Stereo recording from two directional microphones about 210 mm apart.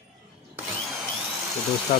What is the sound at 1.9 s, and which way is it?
Speech, 25° left (ahead or behind).